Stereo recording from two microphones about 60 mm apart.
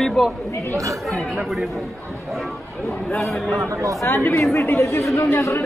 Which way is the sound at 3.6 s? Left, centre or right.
Right.